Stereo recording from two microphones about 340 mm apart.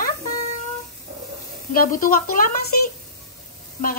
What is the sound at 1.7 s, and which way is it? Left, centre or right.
Speech, left.